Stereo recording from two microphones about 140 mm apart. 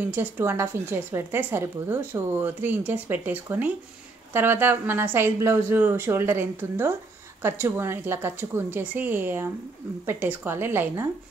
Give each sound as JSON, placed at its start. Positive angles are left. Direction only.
{"t": 0.0, "sound": "a woman's voice", "side_deg": -15}